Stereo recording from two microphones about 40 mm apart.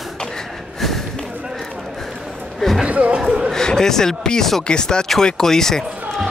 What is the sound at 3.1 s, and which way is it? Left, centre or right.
Chatter, centre.